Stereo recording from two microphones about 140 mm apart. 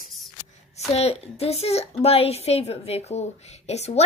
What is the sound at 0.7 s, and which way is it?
A woman's voice, 50° left (ahead or behind).